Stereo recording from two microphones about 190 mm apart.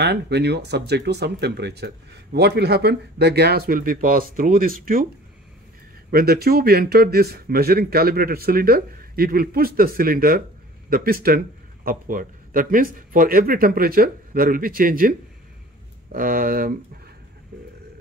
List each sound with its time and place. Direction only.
0.0 s speech: 65° right (ahead or behind); by 5.0 s 45° right (ahead or behind)
6.1 s speech: 55° right (ahead or behind)